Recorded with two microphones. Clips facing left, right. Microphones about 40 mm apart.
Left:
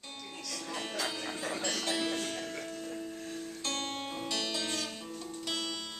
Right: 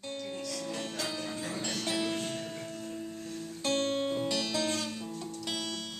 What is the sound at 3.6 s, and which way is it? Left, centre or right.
Music, centre.